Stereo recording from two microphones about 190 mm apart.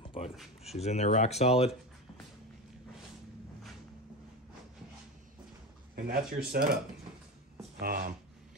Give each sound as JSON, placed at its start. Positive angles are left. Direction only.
{"t": 0.0, "sound": "a sound", "side_deg": 30}
{"t": 0.7, "sound": "speech", "side_deg": 35}
{"t": 5.9, "sound": "speech", "side_deg": -50}
{"t": 7.8, "sound": "speech", "side_deg": -50}